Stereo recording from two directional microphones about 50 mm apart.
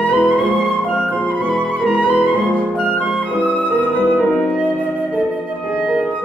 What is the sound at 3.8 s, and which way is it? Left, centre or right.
Music, right.